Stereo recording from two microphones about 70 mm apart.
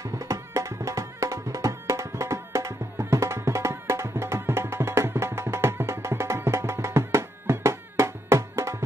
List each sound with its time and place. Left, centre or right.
0.3 s music: right